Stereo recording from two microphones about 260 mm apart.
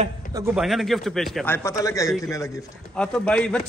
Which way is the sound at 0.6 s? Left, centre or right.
Centre.